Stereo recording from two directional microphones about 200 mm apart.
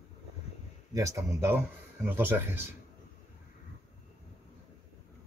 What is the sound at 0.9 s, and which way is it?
Speech, 15° right (ahead or behind).